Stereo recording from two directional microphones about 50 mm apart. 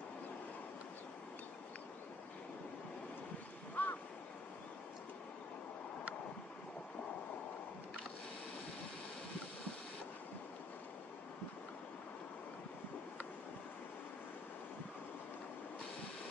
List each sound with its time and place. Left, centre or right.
3.8 s waves: left